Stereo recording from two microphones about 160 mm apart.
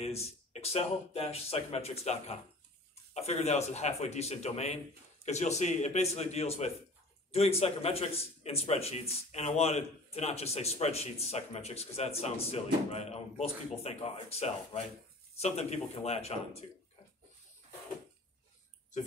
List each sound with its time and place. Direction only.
0.0 s a man's voice: 40° left (ahead or behind)